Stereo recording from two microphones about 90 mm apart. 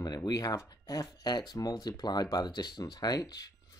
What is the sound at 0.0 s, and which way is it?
Speech, 45° left (ahead or behind).